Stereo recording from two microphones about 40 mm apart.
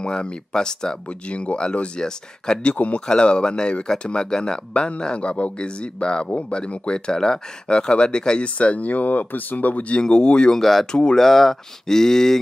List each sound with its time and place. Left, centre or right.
0.0 s speech: left
1.3 s speech: left
2.7 s speech: left
3.1 s speech: left
8.5 s speech: left
9.9 s speech: left
10.6 s speech: centre
10.9 s speech: left
11.1 s speech: centre